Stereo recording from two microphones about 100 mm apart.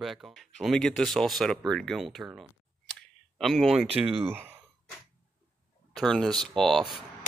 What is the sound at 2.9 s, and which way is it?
Clicking, 5° left (ahead or behind).